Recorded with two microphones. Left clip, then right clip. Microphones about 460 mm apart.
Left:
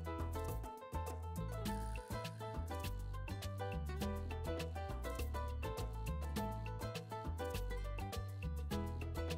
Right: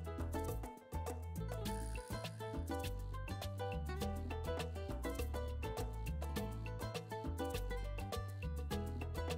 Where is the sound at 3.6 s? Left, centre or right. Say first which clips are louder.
Right 1 dB; right.